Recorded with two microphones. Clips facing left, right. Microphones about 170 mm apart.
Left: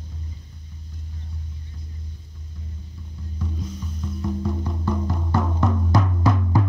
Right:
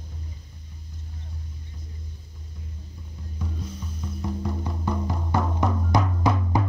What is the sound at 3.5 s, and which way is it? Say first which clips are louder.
Music: left 3 dB; 5° right (ahead or behind).